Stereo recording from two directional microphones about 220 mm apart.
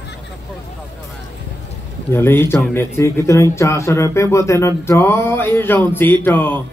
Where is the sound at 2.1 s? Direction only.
10° left (ahead or behind).